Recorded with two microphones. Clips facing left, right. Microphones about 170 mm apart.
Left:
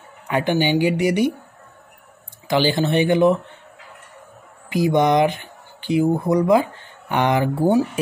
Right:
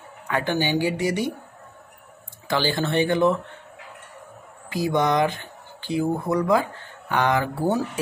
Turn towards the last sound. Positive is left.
turn(degrees=20)  # may be behind; listen again after turning